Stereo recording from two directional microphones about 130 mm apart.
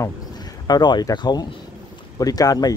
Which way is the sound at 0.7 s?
35° left (ahead or behind).